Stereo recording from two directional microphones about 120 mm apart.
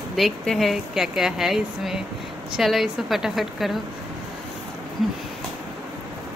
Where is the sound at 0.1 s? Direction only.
Centre (ahead or behind).